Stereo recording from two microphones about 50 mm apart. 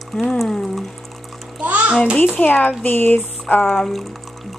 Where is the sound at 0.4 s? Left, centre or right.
Centre.